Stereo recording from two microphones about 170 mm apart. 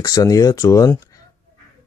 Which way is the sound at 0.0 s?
20° left (ahead or behind).